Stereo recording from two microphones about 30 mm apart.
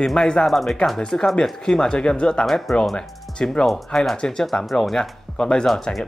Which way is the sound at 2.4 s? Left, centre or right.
Centre.